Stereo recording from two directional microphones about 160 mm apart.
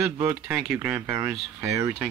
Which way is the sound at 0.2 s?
10° right (ahead or behind).